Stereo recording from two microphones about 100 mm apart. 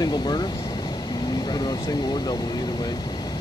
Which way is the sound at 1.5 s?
45° left (ahead or behind).